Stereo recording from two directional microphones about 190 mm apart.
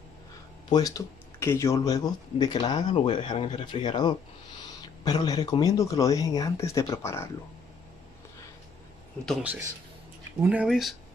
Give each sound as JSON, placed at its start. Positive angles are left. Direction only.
{"t": 0.7, "sound": "speech", "side_deg": 20}
{"t": 9.2, "sound": "speech", "side_deg": -5}